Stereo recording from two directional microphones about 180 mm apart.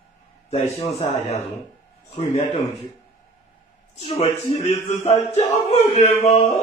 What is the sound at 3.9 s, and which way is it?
Speech, 40° left (ahead or behind).